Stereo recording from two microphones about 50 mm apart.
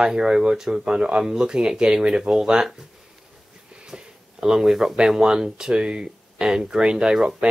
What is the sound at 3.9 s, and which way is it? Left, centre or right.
Speech, centre.